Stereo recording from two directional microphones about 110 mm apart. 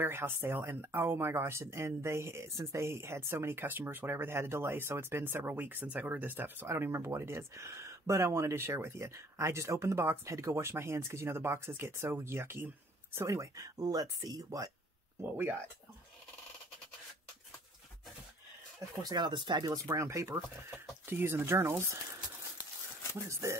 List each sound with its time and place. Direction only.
0.0 s speech: 20° right (ahead or behind)
15.3 s speech: 20° right (ahead or behind)
19.0 s speech: 45° right (ahead or behind); by 21.9 s 25° right (ahead or behind)
23.1 s speech: 25° right (ahead or behind)